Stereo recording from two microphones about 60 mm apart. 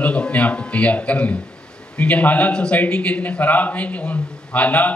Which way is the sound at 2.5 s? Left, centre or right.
Centre.